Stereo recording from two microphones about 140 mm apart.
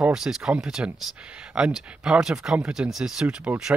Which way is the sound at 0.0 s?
5° right (ahead or behind).